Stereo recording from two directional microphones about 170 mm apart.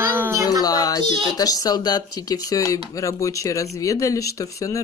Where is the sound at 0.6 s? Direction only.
20° left (ahead or behind).